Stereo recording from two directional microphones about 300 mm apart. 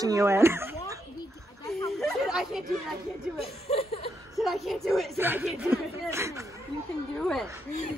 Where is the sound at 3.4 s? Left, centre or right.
Centre.